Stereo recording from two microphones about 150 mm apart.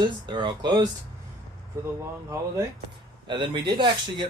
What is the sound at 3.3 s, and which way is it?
Speech, 35° right (ahead or behind).